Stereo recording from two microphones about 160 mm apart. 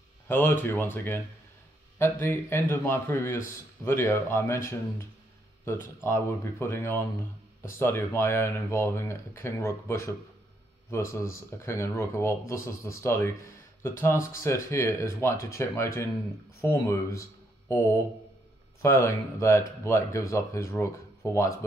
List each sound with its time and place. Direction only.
0.3 s a man's voice: 15° left (ahead or behind)